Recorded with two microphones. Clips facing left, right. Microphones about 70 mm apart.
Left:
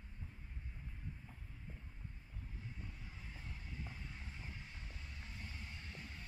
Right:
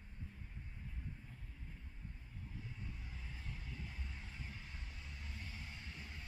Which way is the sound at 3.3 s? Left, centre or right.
Left.